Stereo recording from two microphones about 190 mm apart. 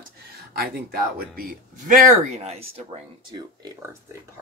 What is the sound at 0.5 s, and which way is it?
Speech, 55° right (ahead or behind).